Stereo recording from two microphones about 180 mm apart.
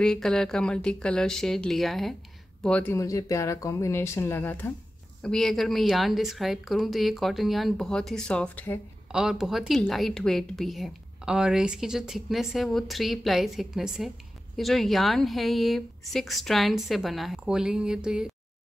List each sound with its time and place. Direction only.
0.0 s a woman's voice: 5° left (ahead or behind)
9.1 s a woman's voice: 5° right (ahead or behind)